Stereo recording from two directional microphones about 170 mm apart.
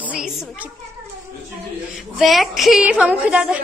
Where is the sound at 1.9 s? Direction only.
Centre (ahead or behind).